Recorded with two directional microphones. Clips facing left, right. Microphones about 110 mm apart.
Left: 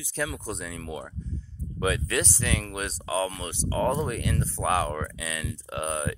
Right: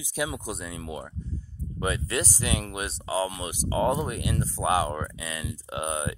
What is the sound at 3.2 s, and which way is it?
Speech, 10° right (ahead or behind).